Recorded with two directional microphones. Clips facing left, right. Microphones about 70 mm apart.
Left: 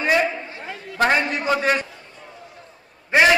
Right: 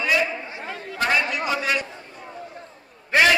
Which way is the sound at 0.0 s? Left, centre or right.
Left.